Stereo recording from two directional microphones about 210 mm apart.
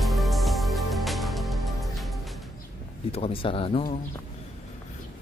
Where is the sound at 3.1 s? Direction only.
25° left (ahead or behind).